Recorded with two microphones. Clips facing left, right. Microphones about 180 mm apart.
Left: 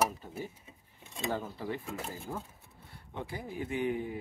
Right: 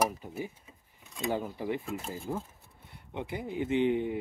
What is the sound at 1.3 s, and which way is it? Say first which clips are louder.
Speech: right 4 dB; 15° right (ahead or behind).